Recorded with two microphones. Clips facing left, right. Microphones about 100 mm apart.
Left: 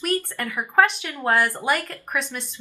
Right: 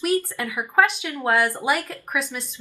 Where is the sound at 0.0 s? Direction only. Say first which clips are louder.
Right 3 dB; 10° right (ahead or behind).